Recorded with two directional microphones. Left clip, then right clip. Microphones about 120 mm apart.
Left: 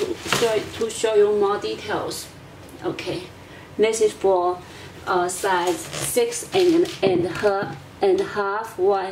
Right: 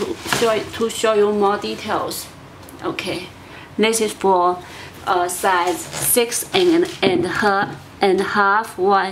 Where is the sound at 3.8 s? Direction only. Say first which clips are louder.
Right 1 dB; 35° right (ahead or behind).